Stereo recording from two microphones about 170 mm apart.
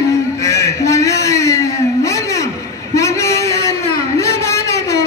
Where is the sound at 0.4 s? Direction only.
20° left (ahead or behind).